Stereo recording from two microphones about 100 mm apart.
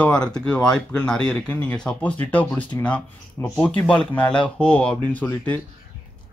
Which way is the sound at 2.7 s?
35° left (ahead or behind).